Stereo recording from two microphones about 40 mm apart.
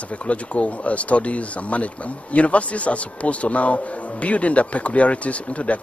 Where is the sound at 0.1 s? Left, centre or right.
Left.